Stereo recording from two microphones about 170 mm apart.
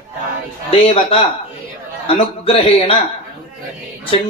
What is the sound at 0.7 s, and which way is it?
Speech, 35° left (ahead or behind).